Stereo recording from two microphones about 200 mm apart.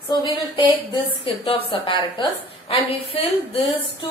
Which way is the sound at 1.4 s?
25° left (ahead or behind).